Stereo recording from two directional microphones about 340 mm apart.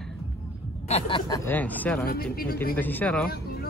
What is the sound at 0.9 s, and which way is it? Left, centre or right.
Speech, centre.